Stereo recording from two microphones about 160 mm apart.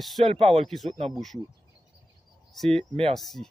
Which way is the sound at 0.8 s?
40° right (ahead or behind).